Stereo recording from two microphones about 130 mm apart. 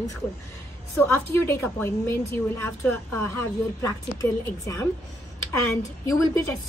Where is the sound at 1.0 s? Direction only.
15° left (ahead or behind).